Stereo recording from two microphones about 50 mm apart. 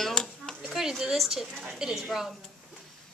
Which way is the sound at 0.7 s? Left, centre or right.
Centre.